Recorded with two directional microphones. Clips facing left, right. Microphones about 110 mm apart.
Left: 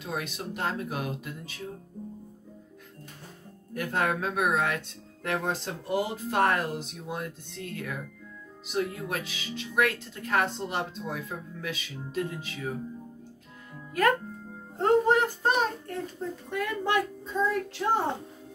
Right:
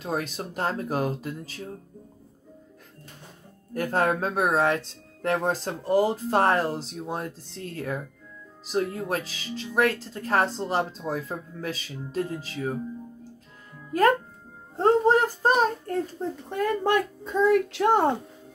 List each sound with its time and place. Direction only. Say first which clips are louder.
0.0 s speech: right 4 dB; 40° right (ahead or behind)
3.7 s speech: right 4 dB; 35° right (ahead or behind)
14.8 s speech: right 3 dB; 35° right (ahead or behind)
17.2 s speech: right 7 dB; 65° right (ahead or behind)